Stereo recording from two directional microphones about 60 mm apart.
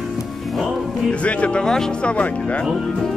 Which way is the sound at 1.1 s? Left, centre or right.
Left.